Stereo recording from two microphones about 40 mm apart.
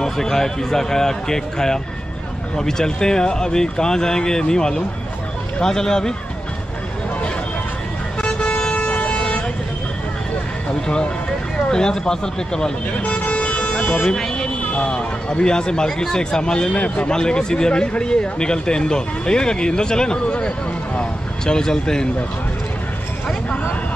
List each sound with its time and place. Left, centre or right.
0.0 s speech: centre
8.2 s vehicle: left
11.5 s speech: centre
13.0 s vehicle: left
14.8 s a man's voice: left
21.5 s speech: centre